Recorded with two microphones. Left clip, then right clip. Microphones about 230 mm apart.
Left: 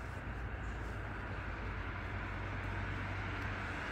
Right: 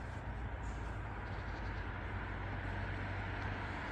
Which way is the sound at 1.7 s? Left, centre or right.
Left.